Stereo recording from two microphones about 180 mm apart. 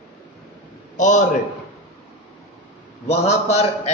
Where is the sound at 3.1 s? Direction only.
35° left (ahead or behind).